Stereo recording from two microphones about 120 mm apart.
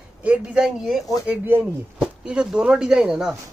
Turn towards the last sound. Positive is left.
turn(degrees=-5)  # may be behind; listen again after turning